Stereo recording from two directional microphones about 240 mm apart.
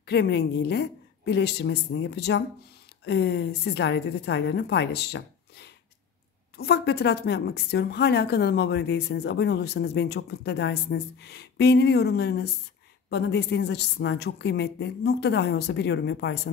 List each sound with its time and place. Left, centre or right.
0.0 s a woman's voice: left